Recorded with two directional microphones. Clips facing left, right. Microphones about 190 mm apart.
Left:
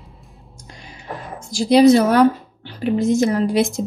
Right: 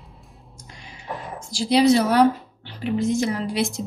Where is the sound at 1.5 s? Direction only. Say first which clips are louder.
Left 5 dB; 45° left (ahead or behind).